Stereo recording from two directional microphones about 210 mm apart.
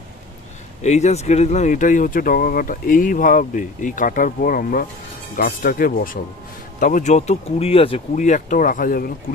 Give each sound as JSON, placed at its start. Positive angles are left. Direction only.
{"t": 0.8, "sound": "speech", "side_deg": 35}